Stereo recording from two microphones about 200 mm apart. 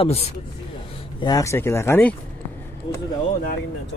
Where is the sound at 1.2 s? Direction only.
15° left (ahead or behind).